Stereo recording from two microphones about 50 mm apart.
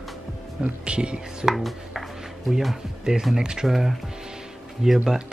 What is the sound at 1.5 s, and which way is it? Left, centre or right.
Chopping, centre.